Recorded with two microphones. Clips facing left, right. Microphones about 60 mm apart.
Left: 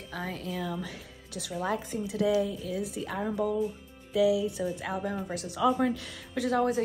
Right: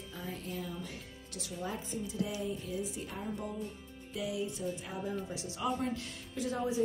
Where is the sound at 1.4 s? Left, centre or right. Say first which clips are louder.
Left 8 dB; left.